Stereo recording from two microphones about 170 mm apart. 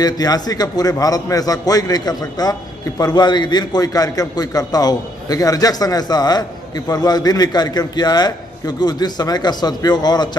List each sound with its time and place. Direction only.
0.0 s a man's voice: 20° left (ahead or behind)